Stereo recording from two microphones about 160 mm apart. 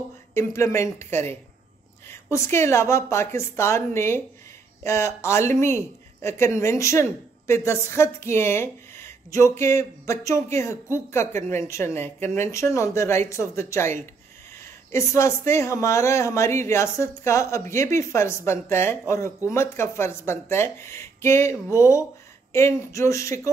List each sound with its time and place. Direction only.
0.3 s speech: 15° left (ahead or behind)